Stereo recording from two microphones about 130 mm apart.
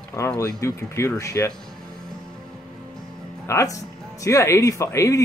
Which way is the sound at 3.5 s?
25° left (ahead or behind).